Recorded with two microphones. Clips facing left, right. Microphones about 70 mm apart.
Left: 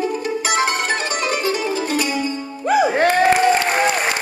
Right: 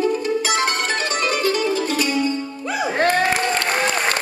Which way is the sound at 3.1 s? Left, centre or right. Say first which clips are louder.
Left 5 dB; left.